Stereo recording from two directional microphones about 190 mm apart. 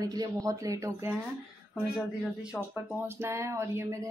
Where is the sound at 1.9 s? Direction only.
5° right (ahead or behind).